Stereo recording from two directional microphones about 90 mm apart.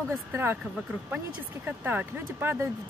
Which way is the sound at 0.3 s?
25° right (ahead or behind).